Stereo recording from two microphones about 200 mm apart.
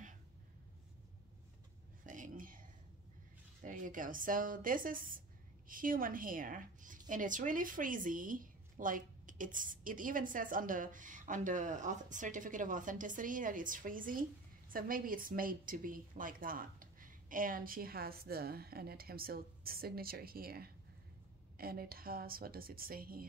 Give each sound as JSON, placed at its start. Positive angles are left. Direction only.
{"t": 2.0, "sound": "whispering", "side_deg": -40}
{"t": 3.6, "sound": "a woman's voice", "side_deg": -40}